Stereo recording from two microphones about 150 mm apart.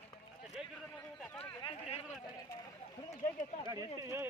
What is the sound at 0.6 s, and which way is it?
Speech, 5° right (ahead or behind).